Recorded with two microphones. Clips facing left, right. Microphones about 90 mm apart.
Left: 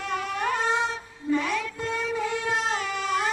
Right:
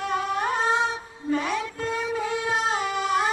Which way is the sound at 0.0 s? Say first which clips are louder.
Right 3 dB; 20° right (ahead or behind).